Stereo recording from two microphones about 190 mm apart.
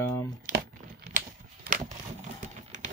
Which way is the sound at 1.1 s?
45° right (ahead or behind).